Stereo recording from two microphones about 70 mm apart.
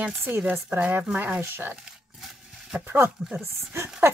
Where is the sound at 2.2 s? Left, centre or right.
Centre.